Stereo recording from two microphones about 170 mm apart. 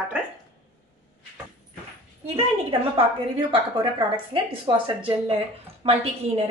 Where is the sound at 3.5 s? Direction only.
30° right (ahead or behind).